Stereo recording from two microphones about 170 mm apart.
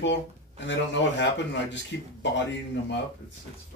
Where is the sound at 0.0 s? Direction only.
90° left.